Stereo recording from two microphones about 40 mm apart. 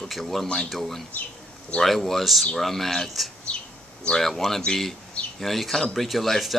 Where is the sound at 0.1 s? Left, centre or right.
Centre.